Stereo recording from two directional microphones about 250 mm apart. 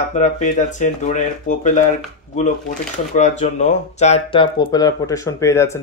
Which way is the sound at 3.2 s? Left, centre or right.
Left.